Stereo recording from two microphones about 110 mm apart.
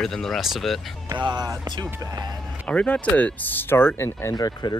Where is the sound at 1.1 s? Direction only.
40° right (ahead or behind).